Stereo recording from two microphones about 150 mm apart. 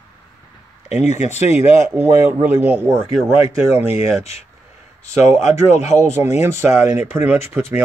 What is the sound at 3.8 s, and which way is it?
Speech, 45° left (ahead or behind).